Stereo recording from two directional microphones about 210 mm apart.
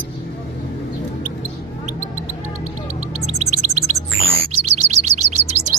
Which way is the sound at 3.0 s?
30° right (ahead or behind).